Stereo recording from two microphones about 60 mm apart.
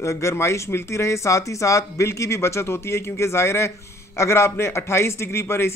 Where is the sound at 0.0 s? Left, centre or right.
Left.